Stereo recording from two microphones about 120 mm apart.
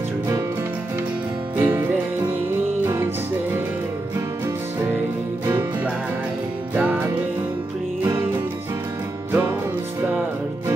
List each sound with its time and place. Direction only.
1.6 s music: 15° right (ahead or behind)
6.7 s music: 10° right (ahead or behind)